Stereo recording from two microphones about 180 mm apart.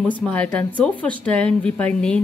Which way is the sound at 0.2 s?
10° left (ahead or behind).